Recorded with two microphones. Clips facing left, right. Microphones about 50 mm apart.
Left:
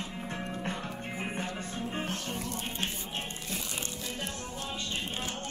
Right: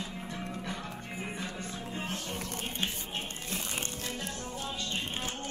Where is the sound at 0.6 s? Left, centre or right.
Left.